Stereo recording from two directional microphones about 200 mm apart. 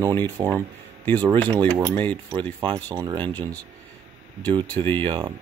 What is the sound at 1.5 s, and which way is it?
Speech, 20° right (ahead or behind).